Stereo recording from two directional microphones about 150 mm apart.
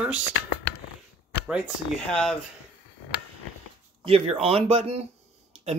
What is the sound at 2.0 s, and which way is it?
Speech, 5° left (ahead or behind).